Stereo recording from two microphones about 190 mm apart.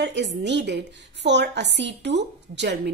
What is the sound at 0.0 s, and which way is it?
A woman's voice, 65° right (ahead or behind).